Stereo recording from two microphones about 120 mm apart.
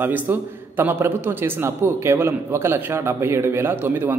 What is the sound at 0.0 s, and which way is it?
A man's voice, 15° right (ahead or behind).